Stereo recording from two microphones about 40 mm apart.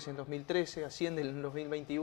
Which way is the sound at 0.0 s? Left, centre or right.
Centre.